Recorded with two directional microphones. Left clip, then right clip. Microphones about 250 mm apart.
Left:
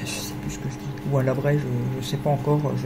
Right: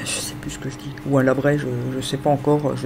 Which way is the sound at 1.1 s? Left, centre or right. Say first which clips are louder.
Right 6 dB; right.